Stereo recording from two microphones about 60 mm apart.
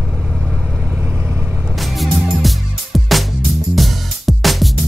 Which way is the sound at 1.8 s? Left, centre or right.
Centre.